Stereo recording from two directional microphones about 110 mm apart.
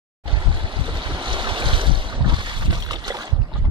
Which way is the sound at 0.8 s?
45° right (ahead or behind).